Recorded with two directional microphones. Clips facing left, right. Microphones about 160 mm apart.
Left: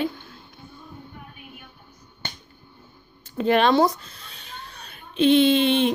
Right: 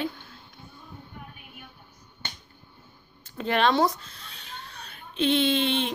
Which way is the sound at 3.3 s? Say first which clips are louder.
Left 5 dB; 10° left (ahead or behind).